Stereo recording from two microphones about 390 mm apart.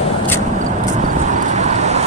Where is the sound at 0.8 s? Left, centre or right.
Centre.